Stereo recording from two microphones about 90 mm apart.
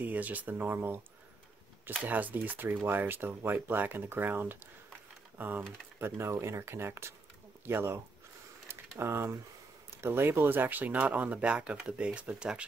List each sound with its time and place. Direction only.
0.0 s speech: 20° right (ahead or behind)
2.0 s speech: 20° right (ahead or behind)
8.6 s a sound: 25° right (ahead or behind)
10.0 s speech: 25° right (ahead or behind)